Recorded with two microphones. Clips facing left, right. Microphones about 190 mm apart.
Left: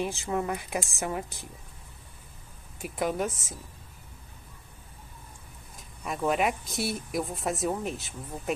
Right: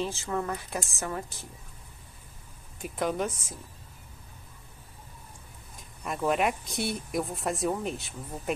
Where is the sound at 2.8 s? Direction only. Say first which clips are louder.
Even; 5° left (ahead or behind).